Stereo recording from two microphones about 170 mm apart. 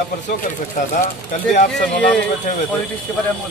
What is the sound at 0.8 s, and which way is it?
Speech, 50° left (ahead or behind).